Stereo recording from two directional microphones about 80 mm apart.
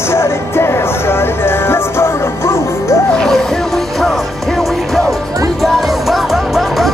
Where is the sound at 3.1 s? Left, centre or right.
Centre.